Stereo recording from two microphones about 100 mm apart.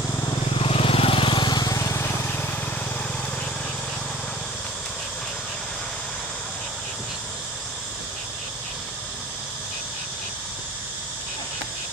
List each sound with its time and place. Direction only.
0.6 s vehicle: 70° left (ahead or behind); by 2.4 s 25° left (ahead or behind)